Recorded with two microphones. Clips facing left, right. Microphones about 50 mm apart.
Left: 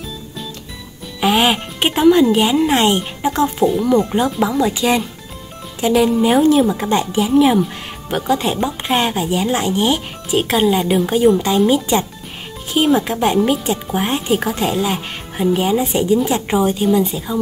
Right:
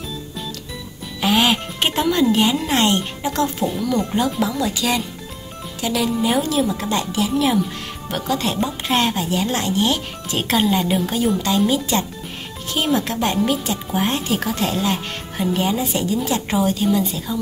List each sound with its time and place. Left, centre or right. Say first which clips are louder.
1.2 s a woman's voice: left 3 dB; centre
15.8 s a woman's voice: left 6 dB; centre